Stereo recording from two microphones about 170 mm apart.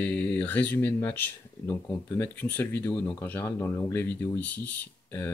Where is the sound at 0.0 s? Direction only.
10° left (ahead or behind).